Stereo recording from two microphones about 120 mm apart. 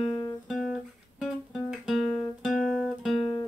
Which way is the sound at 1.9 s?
5° right (ahead or behind).